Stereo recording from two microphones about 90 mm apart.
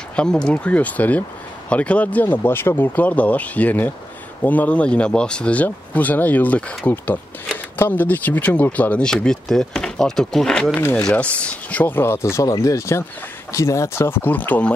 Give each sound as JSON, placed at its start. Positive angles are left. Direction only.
{"t": 0.1, "sound": "speech", "side_deg": 10}